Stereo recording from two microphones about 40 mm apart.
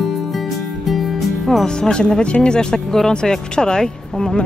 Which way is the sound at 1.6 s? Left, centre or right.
Centre.